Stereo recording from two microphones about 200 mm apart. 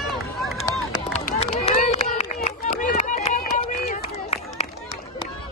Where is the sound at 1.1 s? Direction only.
30° left (ahead or behind).